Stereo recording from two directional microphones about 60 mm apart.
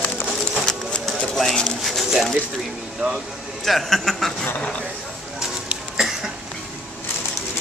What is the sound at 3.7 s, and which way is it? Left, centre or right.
Speech, centre.